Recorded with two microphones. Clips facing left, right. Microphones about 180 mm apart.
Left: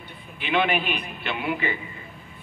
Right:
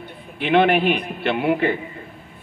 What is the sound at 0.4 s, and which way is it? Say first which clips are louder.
A man's voice: right 7 dB; 65° right (ahead or behind).